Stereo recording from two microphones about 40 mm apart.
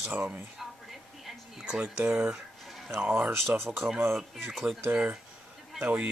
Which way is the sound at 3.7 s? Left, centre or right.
Right.